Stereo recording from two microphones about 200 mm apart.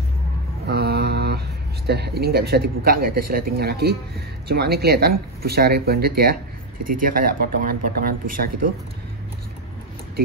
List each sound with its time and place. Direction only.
0.7 s mantra: 55° right (ahead or behind)
1.9 s a man's voice: 50° right (ahead or behind)